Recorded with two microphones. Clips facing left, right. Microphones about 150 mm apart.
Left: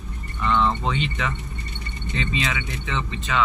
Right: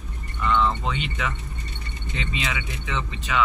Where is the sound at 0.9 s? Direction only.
10° right (ahead or behind).